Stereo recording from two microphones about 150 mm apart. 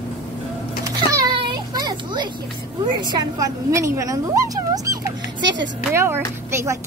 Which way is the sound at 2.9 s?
30° right (ahead or behind).